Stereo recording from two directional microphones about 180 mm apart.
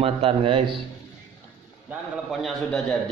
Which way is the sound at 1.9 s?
Centre (ahead or behind).